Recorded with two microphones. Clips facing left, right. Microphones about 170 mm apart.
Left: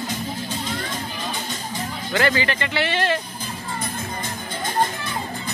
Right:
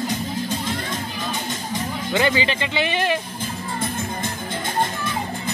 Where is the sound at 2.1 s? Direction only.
20° right (ahead or behind).